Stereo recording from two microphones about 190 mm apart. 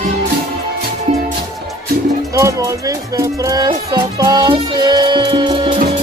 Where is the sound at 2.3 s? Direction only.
15° right (ahead or behind).